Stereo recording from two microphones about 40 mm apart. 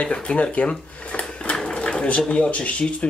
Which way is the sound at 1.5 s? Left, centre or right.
Left.